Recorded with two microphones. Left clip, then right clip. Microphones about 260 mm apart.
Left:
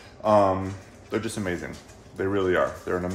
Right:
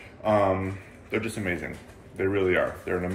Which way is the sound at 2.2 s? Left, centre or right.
Left.